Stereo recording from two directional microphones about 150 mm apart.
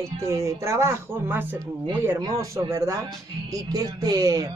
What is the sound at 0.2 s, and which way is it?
Speech, 20° right (ahead or behind).